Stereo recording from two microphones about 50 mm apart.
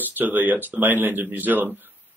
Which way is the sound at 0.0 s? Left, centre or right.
Right.